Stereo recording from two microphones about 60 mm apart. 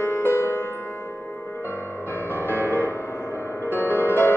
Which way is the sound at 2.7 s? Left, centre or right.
Right.